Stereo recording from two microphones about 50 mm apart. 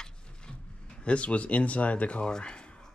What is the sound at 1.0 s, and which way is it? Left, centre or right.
Speech, left.